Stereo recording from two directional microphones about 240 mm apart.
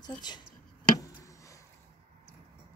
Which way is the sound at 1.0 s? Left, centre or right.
Centre.